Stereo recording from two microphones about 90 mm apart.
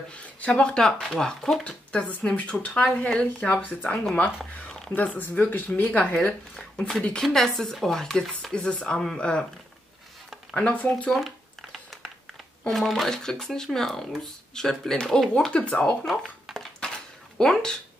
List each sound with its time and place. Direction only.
0.1 s speech: 15° left (ahead or behind)
4.6 s whispering: 5° left (ahead or behind)
4.9 s speech: 15° left (ahead or behind)
10.5 s speech: 15° left (ahead or behind)
11.1 s a sound: centre (ahead or behind)
12.6 s speech: centre (ahead or behind)
16.1 s a sound: centre (ahead or behind)
16.8 s dishes: 5° left (ahead or behind)